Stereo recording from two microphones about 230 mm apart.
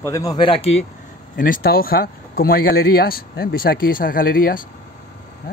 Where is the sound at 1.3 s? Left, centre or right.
Left.